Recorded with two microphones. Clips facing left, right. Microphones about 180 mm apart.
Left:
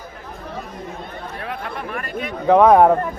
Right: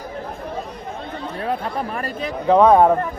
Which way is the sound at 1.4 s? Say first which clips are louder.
Right 6 dB; 30° right (ahead or behind).